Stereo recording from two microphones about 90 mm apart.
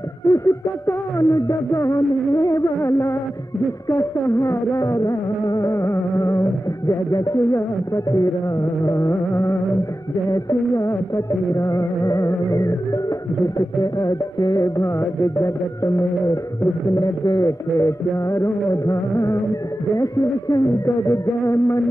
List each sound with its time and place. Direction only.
0.3 s music: 30° left (ahead or behind)
4.7 s music: 35° left (ahead or behind)